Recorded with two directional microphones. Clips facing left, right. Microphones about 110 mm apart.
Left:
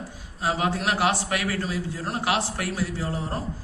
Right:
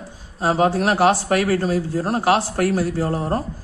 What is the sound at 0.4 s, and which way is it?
A man's voice, 40° right (ahead or behind).